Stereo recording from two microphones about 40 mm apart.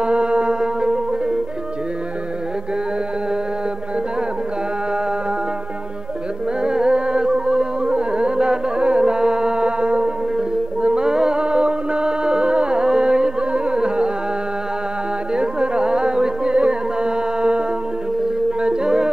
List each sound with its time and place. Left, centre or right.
0.0 s music: right
6.6 s music: right
15.3 s music: right